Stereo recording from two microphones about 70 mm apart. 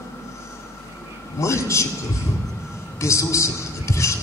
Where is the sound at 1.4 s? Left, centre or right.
Left.